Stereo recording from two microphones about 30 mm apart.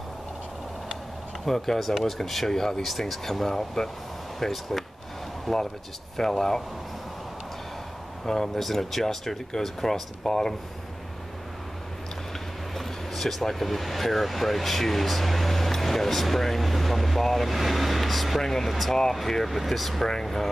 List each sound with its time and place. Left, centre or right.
1.4 s speech: centre
6.1 s speech: centre
8.5 s speech: centre
12.7 s speech: centre
18.7 s speech: centre